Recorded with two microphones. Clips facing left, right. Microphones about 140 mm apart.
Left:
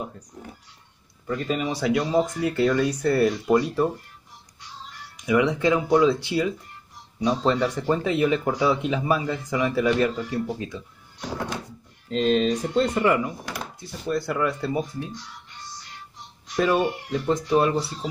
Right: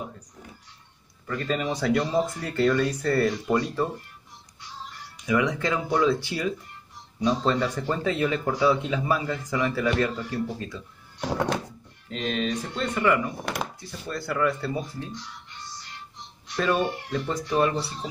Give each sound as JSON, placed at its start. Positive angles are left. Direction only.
{"t": 1.2, "sound": "speech", "side_deg": 15}
{"t": 5.2, "sound": "speech", "side_deg": 15}
{"t": 11.1, "sound": "music", "side_deg": -65}
{"t": 12.1, "sound": "speech", "side_deg": 35}
{"t": 14.0, "sound": "speech", "side_deg": 20}
{"t": 16.5, "sound": "speech", "side_deg": 15}